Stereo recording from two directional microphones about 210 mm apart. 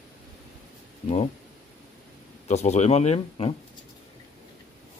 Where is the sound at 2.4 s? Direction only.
30° left (ahead or behind).